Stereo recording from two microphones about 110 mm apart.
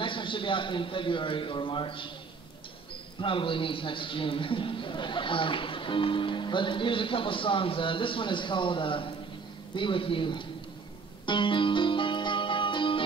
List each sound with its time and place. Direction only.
0.0 s a man's voice: 50° left (ahead or behind)
3.2 s a man's voice: 50° left (ahead or behind)
11.2 s music: 45° left (ahead or behind)